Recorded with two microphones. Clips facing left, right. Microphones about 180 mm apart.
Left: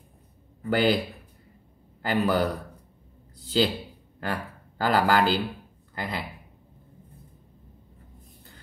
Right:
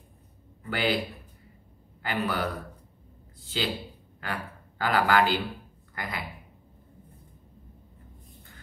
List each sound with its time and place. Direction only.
0.7 s a man's voice: 40° left (ahead or behind)
2.0 s a man's voice: 40° left (ahead or behind)